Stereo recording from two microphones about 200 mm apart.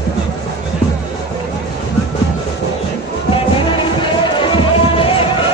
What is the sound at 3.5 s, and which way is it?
Music, 25° left (ahead or behind).